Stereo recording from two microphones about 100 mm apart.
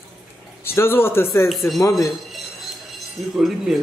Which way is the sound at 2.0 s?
Centre (ahead or behind).